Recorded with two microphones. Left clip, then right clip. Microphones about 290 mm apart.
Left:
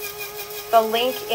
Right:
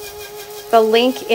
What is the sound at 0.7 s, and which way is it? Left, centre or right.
Speech, right.